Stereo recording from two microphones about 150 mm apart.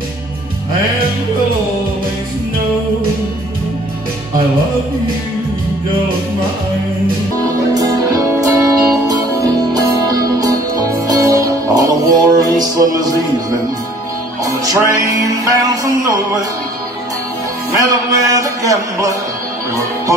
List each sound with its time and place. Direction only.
7.7 s music: 25° right (ahead or behind)
14.4 s music: 20° right (ahead or behind)
17.7 s music: 20° right (ahead or behind)